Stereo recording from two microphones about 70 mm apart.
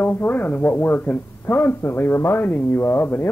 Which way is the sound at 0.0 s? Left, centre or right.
Left.